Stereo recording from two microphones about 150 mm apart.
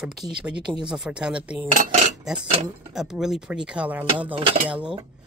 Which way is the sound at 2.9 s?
5° right (ahead or behind).